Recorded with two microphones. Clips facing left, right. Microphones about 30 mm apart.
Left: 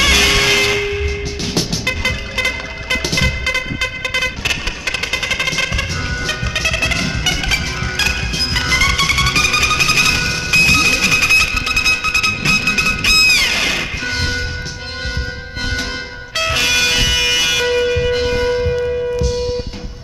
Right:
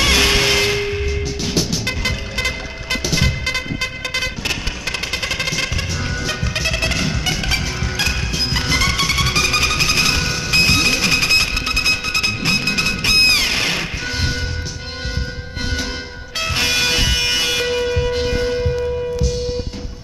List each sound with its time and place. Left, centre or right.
0.0 s music: centre
3.0 s music: centre
6.6 s music: centre
11.3 s music: centre
16.5 s music: centre
17.6 s music: centre
18.1 s church bell: centre